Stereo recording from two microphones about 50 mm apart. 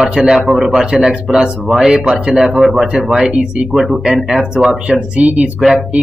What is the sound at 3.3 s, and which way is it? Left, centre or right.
Speech, centre.